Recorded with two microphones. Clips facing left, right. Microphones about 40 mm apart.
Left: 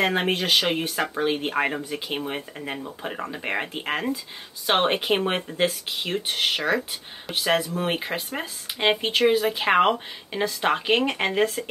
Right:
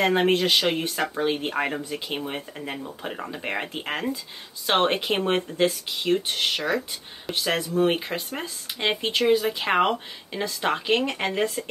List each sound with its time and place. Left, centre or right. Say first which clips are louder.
0.0 s speech: right 2 dB; centre